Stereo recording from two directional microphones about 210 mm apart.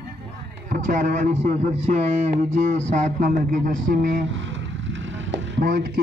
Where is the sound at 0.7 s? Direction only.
40° right (ahead or behind).